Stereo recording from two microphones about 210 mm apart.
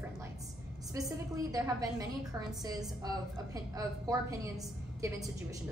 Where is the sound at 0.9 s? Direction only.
15° right (ahead or behind).